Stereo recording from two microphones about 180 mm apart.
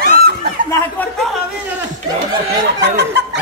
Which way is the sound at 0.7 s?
15° left (ahead or behind).